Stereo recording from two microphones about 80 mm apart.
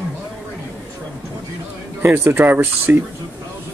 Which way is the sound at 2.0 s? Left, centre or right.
Right.